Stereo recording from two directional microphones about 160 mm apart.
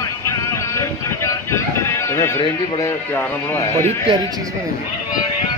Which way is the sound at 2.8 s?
15° left (ahead or behind).